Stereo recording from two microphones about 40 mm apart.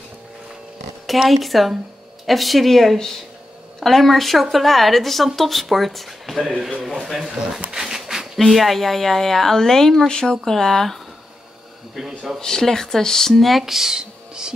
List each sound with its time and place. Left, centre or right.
1.2 s speech: centre
7.1 s speech: centre
7.7 s a sound: centre
8.4 s speech: centre
12.4 s speech: centre
13.3 s speech: centre
13.9 s a sound: centre